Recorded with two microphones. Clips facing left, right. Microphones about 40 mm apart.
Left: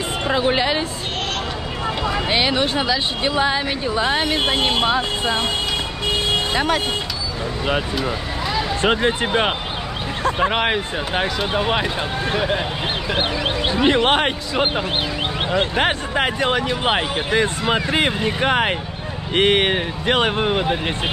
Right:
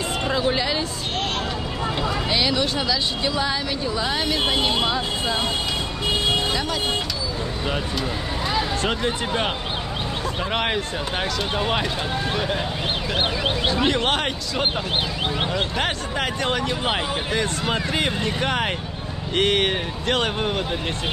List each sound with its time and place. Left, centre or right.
0.3 s speech: left
2.2 s speech: left
6.5 s speech: left
8.8 s speech: left
10.5 s speech: centre
13.7 s speech: left